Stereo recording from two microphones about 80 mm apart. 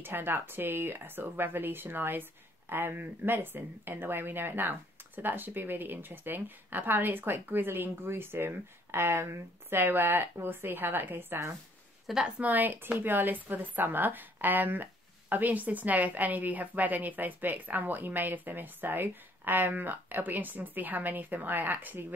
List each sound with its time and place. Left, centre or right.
0.0 s a woman's voice: right